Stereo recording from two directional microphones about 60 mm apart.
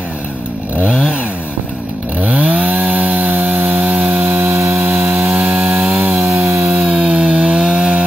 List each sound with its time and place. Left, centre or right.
2.2 s chainsaw: right
6.0 s chainsaw: right
6.8 s chainsaw: centre